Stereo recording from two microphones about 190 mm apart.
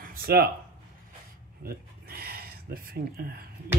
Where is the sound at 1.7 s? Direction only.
55° right (ahead or behind).